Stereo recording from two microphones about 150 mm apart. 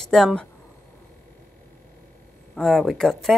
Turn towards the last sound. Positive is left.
turn(degrees=0)  # may be behind; listen again after turning